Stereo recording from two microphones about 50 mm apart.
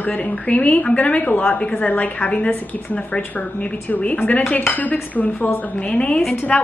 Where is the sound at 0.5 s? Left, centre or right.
Left.